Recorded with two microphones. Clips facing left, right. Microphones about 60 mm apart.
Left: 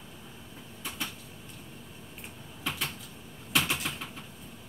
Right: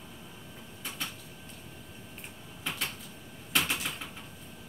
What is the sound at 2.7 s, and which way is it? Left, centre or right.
Cupboard open or close, centre.